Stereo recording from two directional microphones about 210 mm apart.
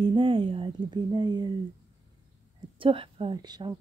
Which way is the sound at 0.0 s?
25° right (ahead or behind).